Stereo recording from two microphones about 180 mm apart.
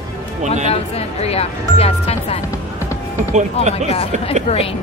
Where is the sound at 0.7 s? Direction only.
35° left (ahead or behind).